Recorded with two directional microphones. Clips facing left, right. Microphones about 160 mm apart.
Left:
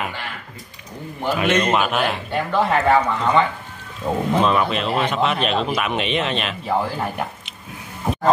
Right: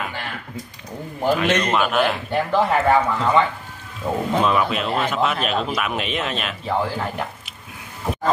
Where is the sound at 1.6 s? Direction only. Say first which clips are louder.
Even; 5° left (ahead or behind).